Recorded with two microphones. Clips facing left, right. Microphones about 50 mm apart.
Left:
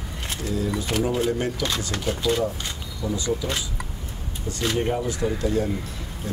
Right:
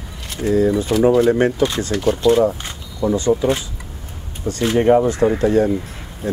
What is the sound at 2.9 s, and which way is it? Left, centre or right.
Speech, right.